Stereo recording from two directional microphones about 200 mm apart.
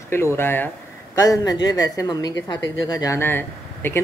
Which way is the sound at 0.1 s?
10° left (ahead or behind).